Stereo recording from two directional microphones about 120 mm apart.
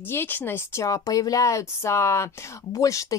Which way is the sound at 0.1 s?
15° left (ahead or behind).